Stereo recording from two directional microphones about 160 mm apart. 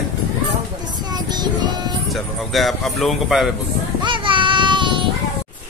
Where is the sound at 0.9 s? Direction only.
25° right (ahead or behind).